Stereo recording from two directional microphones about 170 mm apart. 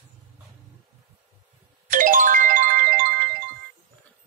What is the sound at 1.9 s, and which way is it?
Music, 50° right (ahead or behind).